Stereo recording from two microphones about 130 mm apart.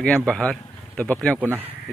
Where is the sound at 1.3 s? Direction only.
15° right (ahead or behind).